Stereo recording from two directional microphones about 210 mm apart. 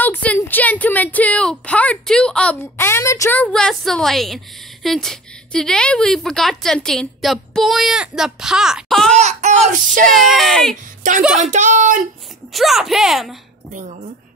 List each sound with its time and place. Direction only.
0.0 s speech: 5° left (ahead or behind)
9.1 s speech: 35° right (ahead or behind)
10.0 s speech: centre (ahead or behind)
11.5 s speech: 35° right (ahead or behind)
12.5 s speech: centre (ahead or behind)